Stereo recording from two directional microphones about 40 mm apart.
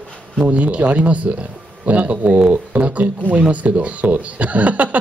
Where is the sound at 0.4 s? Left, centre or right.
Right.